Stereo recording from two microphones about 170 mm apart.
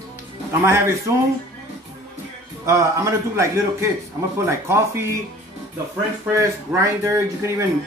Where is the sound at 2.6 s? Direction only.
15° right (ahead or behind).